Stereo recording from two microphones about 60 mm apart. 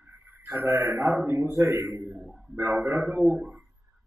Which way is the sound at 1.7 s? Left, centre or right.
Right.